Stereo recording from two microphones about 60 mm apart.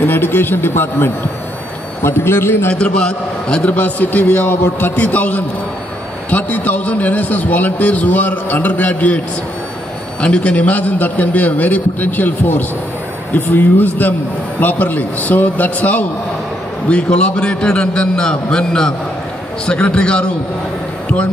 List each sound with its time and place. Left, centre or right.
0.0 s speech: left
2.7 s a man's voice: centre
3.6 s a man's voice: left
10.2 s a man's voice: left